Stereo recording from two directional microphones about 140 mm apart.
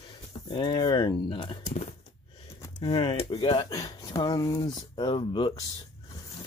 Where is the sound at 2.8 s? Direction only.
35° left (ahead or behind).